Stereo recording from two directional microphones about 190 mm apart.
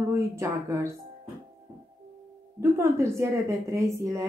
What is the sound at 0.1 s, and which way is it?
Speech, 15° right (ahead or behind).